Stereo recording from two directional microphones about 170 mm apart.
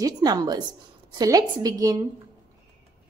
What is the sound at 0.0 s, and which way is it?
A woman's voice, 25° right (ahead or behind).